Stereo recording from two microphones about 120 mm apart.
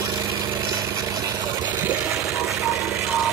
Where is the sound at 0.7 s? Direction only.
30° right (ahead or behind).